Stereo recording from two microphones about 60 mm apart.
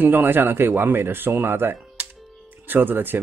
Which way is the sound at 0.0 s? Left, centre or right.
Right.